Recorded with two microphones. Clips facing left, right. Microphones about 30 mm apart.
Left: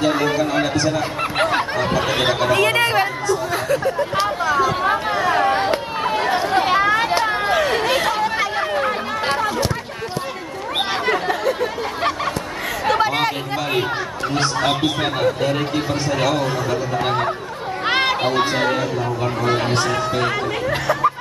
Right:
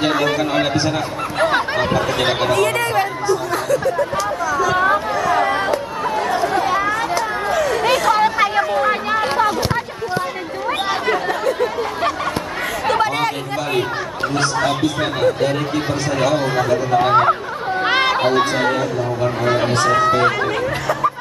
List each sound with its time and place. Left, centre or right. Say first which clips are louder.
0.2 s speech: right 1 dB; right
2.5 s speech: even; left
6.5 s chatter: left 2 dB; left
10.9 s chatter: even; centre
14.3 s speech: right 1 dB; centre
15.0 s speech: right 2 dB; centre
17.1 s speech: right 9 dB; right
17.8 s a sound: right 2 dB; centre
18.6 s speech: right 1 dB; centre
19.9 s speech: right 6 dB; centre